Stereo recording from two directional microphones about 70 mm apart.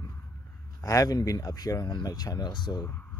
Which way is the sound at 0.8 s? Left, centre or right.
Left.